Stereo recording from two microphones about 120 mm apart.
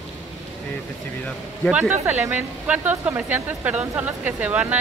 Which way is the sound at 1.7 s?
10° right (ahead or behind).